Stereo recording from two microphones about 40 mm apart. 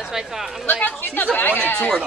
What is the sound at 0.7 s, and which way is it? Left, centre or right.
A woman's voice, left.